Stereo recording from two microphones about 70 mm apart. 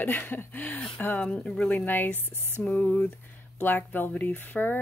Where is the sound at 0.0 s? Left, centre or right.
Left.